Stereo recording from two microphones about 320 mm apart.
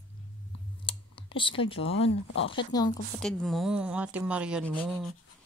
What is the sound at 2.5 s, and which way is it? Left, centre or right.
Speech, centre.